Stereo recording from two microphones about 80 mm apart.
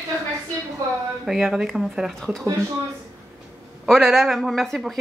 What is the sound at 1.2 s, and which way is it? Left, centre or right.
Speech, centre.